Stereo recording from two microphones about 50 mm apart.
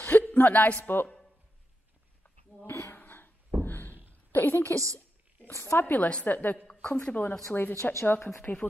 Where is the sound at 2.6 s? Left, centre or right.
Left.